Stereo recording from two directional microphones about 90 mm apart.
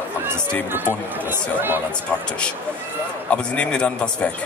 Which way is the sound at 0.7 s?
25° right (ahead or behind).